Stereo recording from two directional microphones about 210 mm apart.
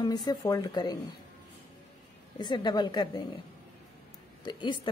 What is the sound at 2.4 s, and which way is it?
Speech, 20° left (ahead or behind).